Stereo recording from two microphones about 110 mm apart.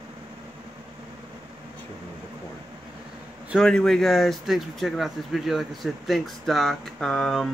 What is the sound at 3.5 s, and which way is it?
Speech, 5° left (ahead or behind).